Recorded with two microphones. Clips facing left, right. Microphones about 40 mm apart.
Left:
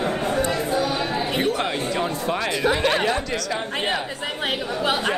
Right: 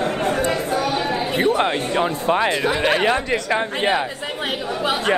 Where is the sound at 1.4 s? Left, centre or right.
Right.